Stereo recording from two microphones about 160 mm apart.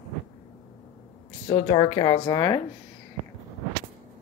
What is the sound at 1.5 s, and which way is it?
Speech, 35° left (ahead or behind).